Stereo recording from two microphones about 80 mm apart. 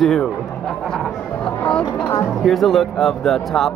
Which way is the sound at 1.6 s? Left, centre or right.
Centre.